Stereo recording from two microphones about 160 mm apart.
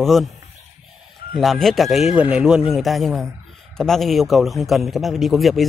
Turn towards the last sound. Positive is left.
turn(degrees=0)  # may be behind; listen again after turning